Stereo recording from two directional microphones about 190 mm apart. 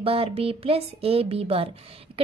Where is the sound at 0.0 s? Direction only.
30° right (ahead or behind).